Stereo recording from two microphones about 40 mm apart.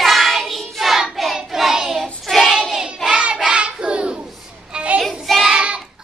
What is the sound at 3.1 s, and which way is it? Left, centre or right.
Child singing, right.